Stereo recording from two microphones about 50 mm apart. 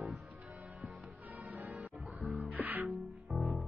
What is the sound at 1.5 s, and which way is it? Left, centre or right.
Music, right.